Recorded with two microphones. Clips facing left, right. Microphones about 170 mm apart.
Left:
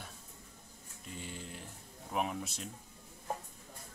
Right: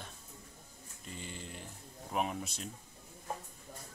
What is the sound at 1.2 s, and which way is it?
Speech, centre (ahead or behind).